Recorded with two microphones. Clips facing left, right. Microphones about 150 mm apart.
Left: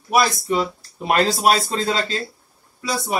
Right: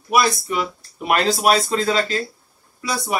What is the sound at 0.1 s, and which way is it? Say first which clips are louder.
Speech: even; 30° left (ahead or behind).